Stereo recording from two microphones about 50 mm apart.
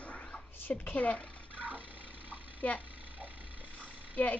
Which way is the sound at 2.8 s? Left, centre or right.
Right.